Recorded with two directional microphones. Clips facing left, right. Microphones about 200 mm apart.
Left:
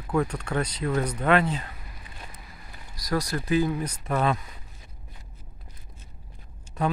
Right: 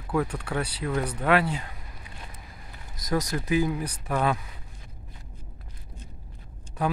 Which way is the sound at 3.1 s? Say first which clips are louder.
Even; 20° right (ahead or behind).